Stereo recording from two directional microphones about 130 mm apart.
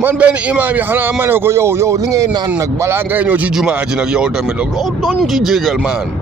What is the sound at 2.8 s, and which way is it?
Speech, 15° right (ahead or behind).